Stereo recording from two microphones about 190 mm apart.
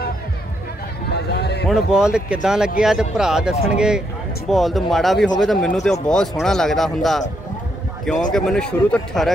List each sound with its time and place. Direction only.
1.1 s run: 60° left (ahead or behind)
1.7 s speech: 5° right (ahead or behind)
8.3 s speech: 5° left (ahead or behind)